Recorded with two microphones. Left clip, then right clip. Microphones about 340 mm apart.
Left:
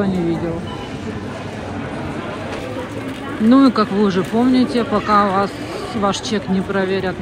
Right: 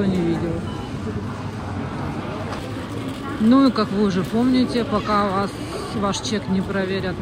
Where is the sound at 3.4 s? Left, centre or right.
Left.